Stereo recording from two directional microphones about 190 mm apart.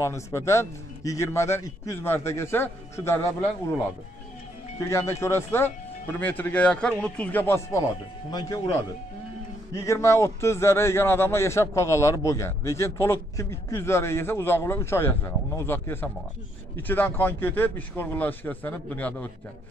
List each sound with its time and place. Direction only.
0.0 s a man's voice: 15° left (ahead or behind)
4.7 s a man's voice: 15° left (ahead or behind)
9.8 s a man's voice: 15° left (ahead or behind)